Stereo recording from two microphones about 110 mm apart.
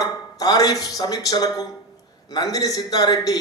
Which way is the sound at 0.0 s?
35° left (ahead or behind).